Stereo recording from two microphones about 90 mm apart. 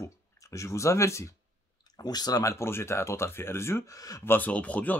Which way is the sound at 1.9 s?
45° left (ahead or behind).